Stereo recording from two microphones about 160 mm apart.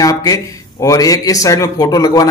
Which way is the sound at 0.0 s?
20° left (ahead or behind).